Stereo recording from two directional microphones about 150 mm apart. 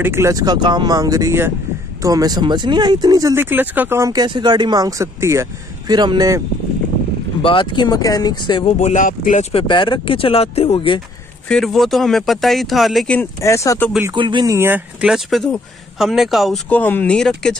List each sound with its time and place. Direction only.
0.0 s speech: 15° right (ahead or behind)
7.4 s speech: 30° left (ahead or behind)
8.6 s speech: 55° left (ahead or behind)
9.5 s speech: 35° left (ahead or behind)
11.4 s speech: 5° left (ahead or behind)
13.4 s speech: 20° left (ahead or behind)
14.1 s speech: 30° right (ahead or behind)
14.5 s speech: 15° right (ahead or behind)
16.6 s speech: 10° left (ahead or behind)